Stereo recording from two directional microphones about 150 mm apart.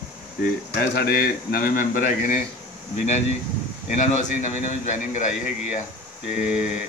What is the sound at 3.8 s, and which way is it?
Speech, 50° left (ahead or behind).